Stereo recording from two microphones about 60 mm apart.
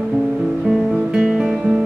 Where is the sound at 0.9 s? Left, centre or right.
Centre.